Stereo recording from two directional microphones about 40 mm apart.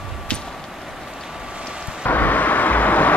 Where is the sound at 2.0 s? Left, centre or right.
Left.